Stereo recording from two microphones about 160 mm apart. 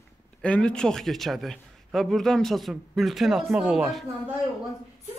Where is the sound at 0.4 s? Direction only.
5° left (ahead or behind).